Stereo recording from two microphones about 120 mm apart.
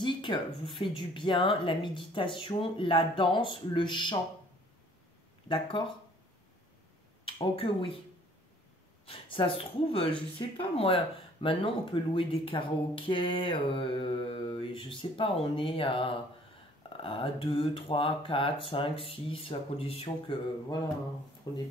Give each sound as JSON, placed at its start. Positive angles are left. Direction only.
{"t": 0.0, "sound": "a sound", "side_deg": 40}
{"t": 0.7, "sound": "speech", "side_deg": 45}
{"t": 5.5, "sound": "speech", "side_deg": 40}
{"t": 7.2, "sound": "speech", "side_deg": 50}
{"t": 9.0, "sound": "speech", "side_deg": 50}
{"t": 21.5, "sound": "speech", "side_deg": 35}